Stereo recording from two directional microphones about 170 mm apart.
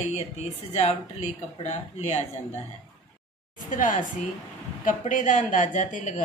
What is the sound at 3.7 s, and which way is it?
A woman's voice, 50° left (ahead or behind).